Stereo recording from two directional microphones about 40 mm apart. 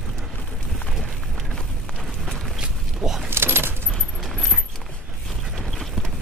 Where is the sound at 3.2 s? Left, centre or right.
Right.